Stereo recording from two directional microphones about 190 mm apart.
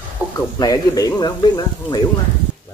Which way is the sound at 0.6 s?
20° left (ahead or behind).